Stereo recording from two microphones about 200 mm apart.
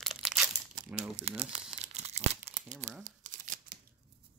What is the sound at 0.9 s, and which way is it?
Crumpling, 30° right (ahead or behind).